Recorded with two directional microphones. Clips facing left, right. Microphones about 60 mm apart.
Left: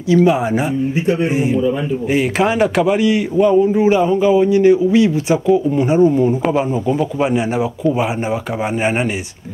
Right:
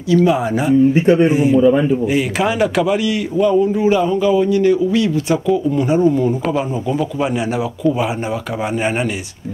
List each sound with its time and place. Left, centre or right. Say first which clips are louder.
0.1 s speech: left 1 dB; centre
1.0 s a man's voice: right 5 dB; right
1.3 s a man's voice: right 4 dB; centre